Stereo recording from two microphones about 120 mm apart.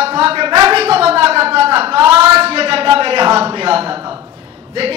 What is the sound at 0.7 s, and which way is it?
Speech, 55° right (ahead or behind).